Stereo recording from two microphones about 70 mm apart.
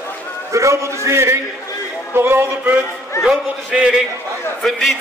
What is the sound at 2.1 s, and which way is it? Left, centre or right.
Speech, right.